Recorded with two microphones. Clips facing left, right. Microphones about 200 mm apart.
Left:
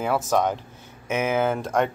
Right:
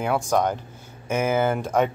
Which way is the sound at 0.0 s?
Centre (ahead or behind).